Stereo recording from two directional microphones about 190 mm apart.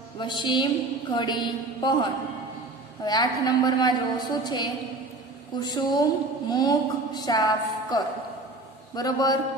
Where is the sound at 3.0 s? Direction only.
20° left (ahead or behind).